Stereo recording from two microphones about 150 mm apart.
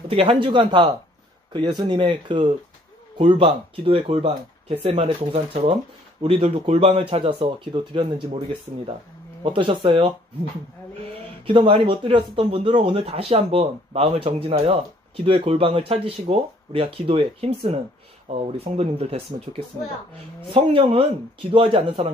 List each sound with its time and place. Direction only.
0.1 s a man's voice: 35° right (ahead or behind)
9.4 s a man's voice: 35° right (ahead or behind)
11.4 s a man's voice: 35° right (ahead or behind)
18.6 s a man's voice: 40° right (ahead or behind)
20.5 s a man's voice: 40° right (ahead or behind)